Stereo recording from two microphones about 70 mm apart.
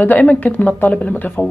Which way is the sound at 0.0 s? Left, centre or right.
Left.